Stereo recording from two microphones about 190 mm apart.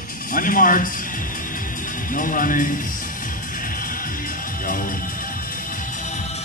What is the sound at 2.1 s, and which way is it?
Speech, 45° left (ahead or behind).